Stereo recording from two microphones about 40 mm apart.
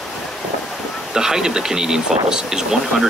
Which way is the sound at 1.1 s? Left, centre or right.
Centre.